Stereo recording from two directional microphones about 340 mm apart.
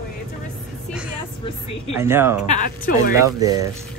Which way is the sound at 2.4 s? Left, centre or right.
Left.